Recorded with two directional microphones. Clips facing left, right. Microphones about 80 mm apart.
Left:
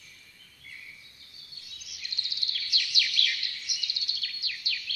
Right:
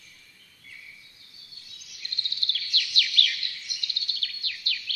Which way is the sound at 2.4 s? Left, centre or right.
Centre.